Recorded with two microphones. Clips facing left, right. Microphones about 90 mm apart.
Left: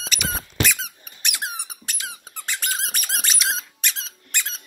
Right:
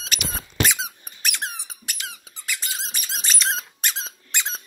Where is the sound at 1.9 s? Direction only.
20° left (ahead or behind).